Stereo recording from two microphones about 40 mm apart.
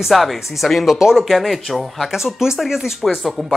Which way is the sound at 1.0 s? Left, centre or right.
Centre.